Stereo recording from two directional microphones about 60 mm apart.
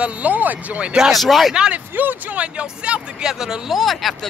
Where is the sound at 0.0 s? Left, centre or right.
Right.